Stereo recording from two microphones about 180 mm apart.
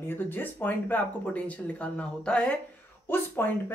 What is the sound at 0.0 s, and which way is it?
Speech, 10° left (ahead or behind).